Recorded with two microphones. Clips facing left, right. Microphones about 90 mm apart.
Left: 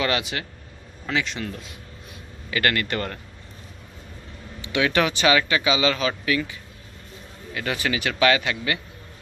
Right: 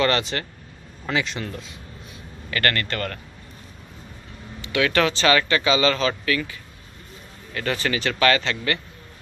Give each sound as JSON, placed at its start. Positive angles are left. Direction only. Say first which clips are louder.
{"t": 0.0, "sound": "speech", "louder": "right 3 dB", "side_deg": 5}
{"t": 2.5, "sound": "speech", "louder": "left 1 dB", "side_deg": 10}
{"t": 4.6, "sound": "speech", "louder": "right 1 dB", "side_deg": 20}
{"t": 7.5, "sound": "speech", "louder": "right 1 dB", "side_deg": 10}